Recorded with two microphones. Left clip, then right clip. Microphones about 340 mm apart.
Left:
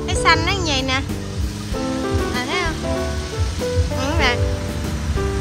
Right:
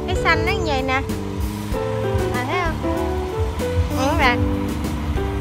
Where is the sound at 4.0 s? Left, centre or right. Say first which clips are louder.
Right 3 dB; centre.